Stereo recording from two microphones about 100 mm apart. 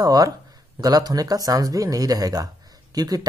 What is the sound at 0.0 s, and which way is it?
Speech, 40° right (ahead or behind).